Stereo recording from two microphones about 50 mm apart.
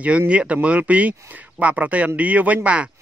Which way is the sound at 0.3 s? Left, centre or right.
Right.